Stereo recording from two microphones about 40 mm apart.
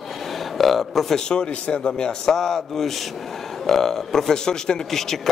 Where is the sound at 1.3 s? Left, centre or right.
Left.